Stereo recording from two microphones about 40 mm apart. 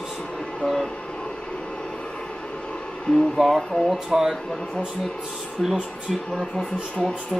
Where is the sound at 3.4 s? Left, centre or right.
Centre.